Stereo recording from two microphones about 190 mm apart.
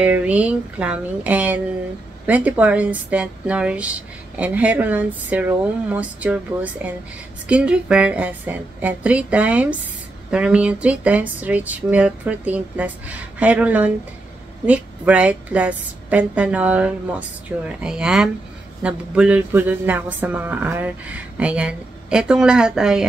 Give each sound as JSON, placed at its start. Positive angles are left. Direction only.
{"t": 0.0, "sound": "speech", "side_deg": -5}